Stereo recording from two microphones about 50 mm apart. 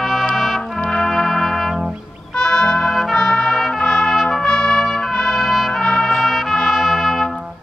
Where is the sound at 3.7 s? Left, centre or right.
Centre.